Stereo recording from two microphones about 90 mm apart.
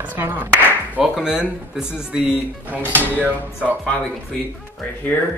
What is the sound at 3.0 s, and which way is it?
Speech, 20° right (ahead or behind).